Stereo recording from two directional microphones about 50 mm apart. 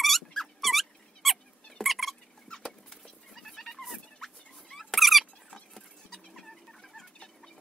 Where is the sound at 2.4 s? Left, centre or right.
Centre.